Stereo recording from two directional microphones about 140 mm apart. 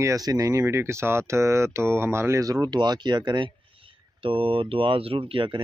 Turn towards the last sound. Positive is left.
turn(degrees=-35)  # may be behind; listen again after turning